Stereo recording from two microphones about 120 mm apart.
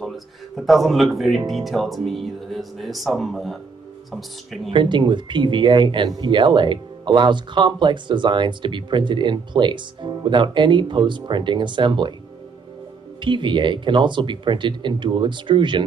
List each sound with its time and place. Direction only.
0.0 s speech: centre (ahead or behind)
4.6 s speech: 40° right (ahead or behind)
13.2 s speech: 40° right (ahead or behind)